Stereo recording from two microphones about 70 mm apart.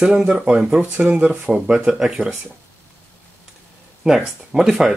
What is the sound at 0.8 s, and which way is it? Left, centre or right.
Speech, right.